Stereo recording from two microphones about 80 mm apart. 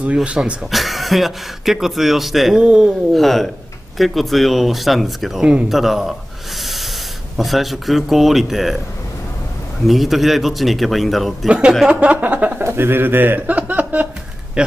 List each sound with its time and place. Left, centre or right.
0.0 s speech: centre
0.7 s speech: centre
3.1 s speech: centre
6.6 s snort: centre
7.3 s speech: centre
9.8 s speech: centre
11.4 s a man's voice: centre